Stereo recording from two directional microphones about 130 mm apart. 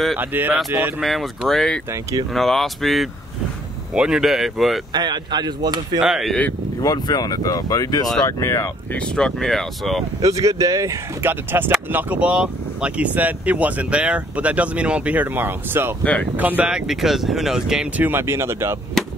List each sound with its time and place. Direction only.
0.2 s speech: 15° right (ahead or behind)
1.0 s speech: centre (ahead or behind)
4.9 s speech: 35° right (ahead or behind)
5.9 s speech: 5° right (ahead or behind)
6.8 s speech: 30° left (ahead or behind)
8.9 s speech: 5° left (ahead or behind)
10.2 s speech: 25° right (ahead or behind)
16.0 s speech: 10° left (ahead or behind)
16.3 s speech: 10° right (ahead or behind)